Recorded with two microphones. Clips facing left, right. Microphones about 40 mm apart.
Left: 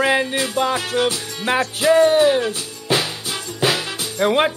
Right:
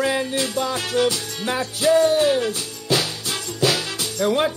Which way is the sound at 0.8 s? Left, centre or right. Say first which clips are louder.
Even; left.